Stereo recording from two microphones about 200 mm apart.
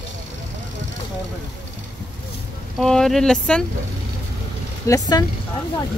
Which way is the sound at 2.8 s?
Centre (ahead or behind).